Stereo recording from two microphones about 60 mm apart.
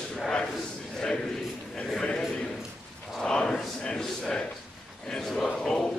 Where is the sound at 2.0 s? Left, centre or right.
Centre.